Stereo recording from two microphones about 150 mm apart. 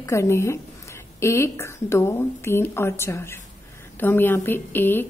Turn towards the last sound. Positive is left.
turn(degrees=15)  # may be behind; listen again after turning